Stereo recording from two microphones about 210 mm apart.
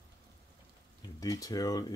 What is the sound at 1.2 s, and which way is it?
Speech, 15° left (ahead or behind).